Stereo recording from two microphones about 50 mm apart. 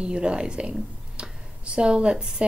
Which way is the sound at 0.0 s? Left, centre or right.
Right.